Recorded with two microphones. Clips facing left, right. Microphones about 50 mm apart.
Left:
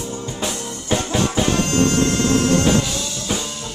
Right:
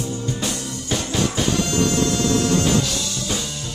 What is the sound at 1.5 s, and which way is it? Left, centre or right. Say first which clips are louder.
Music: left 2 dB; left.